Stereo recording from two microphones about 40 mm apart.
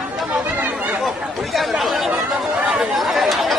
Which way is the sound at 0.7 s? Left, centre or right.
Right.